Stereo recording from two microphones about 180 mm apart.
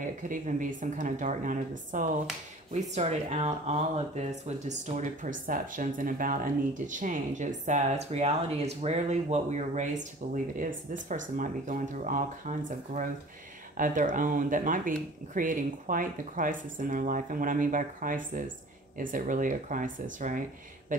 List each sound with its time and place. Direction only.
0.3 s speech: 45° right (ahead or behind)